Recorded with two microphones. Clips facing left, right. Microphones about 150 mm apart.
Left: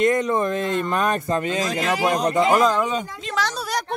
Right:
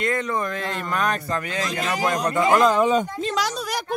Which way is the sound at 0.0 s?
20° left (ahead or behind).